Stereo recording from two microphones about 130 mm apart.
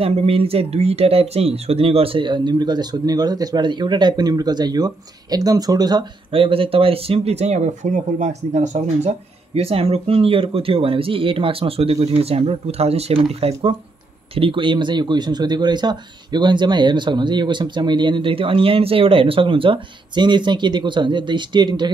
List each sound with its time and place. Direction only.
0.0 s speech: 50° right (ahead or behind); by 6.0 s 30° right (ahead or behind)
6.3 s speech: 45° right (ahead or behind)